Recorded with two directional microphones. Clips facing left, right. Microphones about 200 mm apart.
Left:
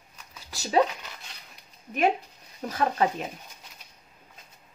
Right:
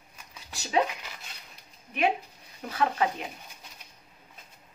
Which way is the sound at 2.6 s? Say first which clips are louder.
Left 4 dB; 40° left (ahead or behind).